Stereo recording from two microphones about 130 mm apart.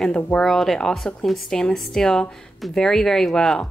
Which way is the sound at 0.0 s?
10° left (ahead or behind).